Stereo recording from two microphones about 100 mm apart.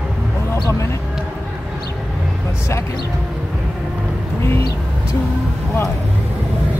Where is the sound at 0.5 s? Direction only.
30° left (ahead or behind).